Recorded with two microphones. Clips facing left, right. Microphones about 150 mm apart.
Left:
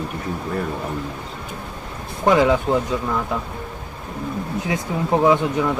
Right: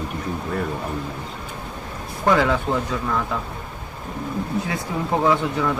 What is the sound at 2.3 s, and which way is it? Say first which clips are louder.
Speech: left 3 dB; 15° left (ahead or behind).